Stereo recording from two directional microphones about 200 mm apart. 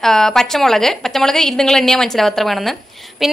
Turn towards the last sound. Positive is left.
turn(degrees=0)  # may be behind; listen again after turning